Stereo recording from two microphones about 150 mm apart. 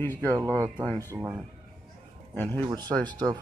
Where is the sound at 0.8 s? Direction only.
10° left (ahead or behind).